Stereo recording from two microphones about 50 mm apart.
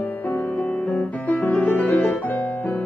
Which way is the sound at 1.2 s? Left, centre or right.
Left.